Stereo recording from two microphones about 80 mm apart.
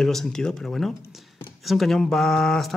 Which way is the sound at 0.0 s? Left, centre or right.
Centre.